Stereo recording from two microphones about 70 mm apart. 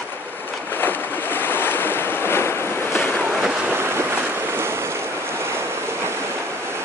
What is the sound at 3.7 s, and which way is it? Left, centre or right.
Waves, right.